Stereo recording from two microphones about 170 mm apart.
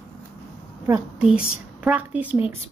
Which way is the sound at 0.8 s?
10° right (ahead or behind).